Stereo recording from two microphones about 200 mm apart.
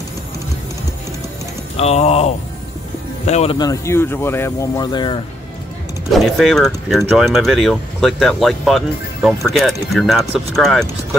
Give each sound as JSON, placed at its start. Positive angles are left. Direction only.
{"t": 1.8, "sound": "speech", "side_deg": 30}
{"t": 3.5, "sound": "speech", "side_deg": 15}
{"t": 6.1, "sound": "speech", "side_deg": 0}